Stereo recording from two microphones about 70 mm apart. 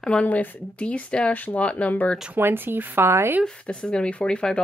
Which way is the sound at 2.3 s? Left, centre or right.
Right.